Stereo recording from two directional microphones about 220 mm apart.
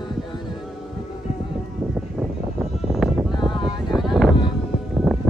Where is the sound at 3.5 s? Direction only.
20° left (ahead or behind).